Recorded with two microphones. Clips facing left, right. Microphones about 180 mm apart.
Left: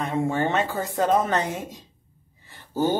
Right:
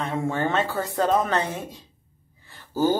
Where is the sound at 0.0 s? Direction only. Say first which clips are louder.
Left 1 dB; 20° left (ahead or behind).